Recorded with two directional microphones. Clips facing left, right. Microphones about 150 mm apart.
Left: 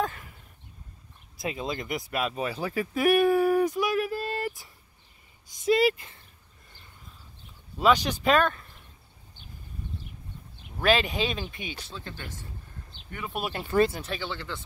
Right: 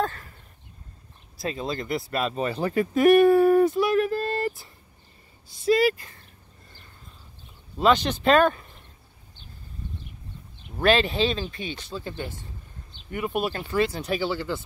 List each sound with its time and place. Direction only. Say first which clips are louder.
0.0 s a sound: right 2 dB; 10° left (ahead or behind)
1.4 s speech: right 2 dB; 15° left (ahead or behind)
7.8 s speech: right 2 dB; 10° left (ahead or behind)
10.8 s speech: right 3 dB; 5° left (ahead or behind)
11.9 s speech: right 7 dB; 10° right (ahead or behind)
13.5 s speech: right 2 dB; 25° left (ahead or behind)
14.0 s speech: right 8 dB; 10° right (ahead or behind)